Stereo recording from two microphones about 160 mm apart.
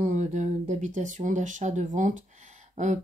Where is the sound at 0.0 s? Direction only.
50° right (ahead or behind).